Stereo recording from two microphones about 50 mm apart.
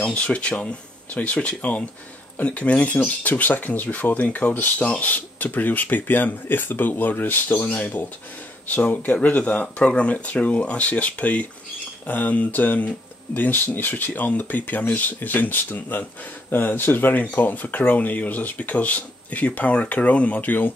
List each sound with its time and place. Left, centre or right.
0.0 s speech: left